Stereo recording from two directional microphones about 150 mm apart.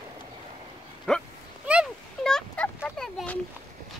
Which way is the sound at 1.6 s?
5° right (ahead or behind).